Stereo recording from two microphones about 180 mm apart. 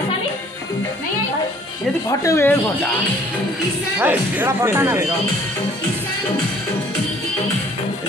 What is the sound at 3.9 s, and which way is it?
Speech, 10° right (ahead or behind).